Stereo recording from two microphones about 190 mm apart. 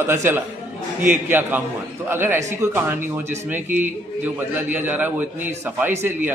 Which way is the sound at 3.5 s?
10° right (ahead or behind).